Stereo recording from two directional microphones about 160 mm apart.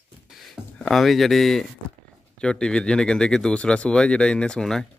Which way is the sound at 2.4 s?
5° left (ahead or behind).